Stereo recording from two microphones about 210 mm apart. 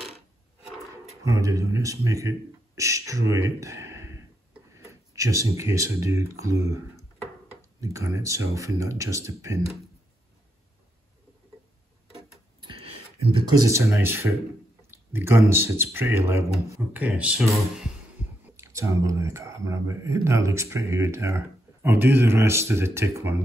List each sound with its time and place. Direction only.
1.2 s a man's voice: 15° right (ahead or behind)
7.8 s speech: 15° right (ahead or behind)
12.6 s a sound: 25° right (ahead or behind)
13.5 s speech: 15° right (ahead or behind)